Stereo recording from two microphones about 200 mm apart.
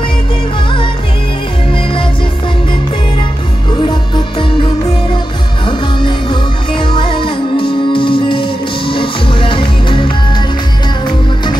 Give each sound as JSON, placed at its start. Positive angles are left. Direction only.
{"t": 4.4, "sound": "music", "side_deg": 25}